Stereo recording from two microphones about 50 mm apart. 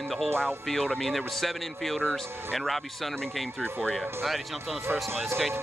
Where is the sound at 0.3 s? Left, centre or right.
Right.